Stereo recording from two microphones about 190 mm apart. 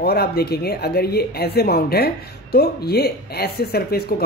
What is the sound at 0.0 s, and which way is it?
Speech, 55° left (ahead or behind).